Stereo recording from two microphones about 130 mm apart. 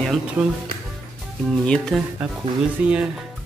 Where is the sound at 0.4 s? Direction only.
10° right (ahead or behind).